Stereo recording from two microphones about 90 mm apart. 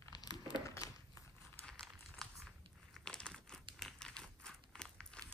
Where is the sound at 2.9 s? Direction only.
10° left (ahead or behind).